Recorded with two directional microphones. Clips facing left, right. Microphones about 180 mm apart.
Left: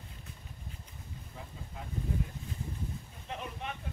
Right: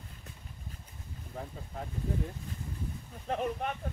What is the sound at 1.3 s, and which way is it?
Speech, 40° right (ahead or behind).